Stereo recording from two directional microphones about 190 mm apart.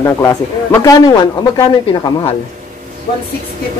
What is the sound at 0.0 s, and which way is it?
Speech, 15° left (ahead or behind).